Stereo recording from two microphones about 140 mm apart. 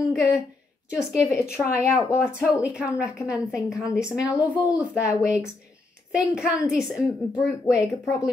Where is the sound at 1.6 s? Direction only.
5° left (ahead or behind).